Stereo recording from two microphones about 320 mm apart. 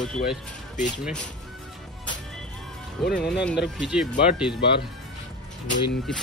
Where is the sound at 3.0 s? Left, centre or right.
Centre.